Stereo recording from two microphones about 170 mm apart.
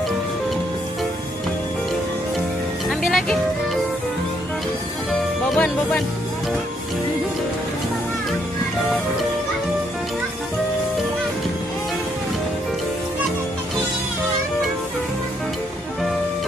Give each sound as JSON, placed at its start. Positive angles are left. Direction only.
{"t": 3.1, "sound": "music", "side_deg": 0}
{"t": 5.5, "sound": "speech", "side_deg": 5}